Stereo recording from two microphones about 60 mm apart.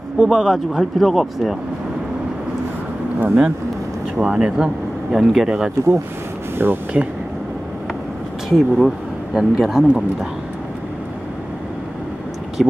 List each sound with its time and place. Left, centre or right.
0.2 s speech: centre
3.2 s speech: right
4.2 s speech: centre
5.1 s speech: centre
6.6 s speech: right
8.5 s speech: centre
12.6 s speech: centre